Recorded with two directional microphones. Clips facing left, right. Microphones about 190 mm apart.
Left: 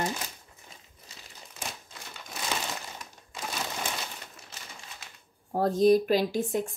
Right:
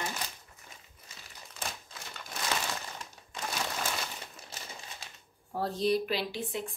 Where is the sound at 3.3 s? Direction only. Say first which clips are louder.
Even; centre (ahead or behind).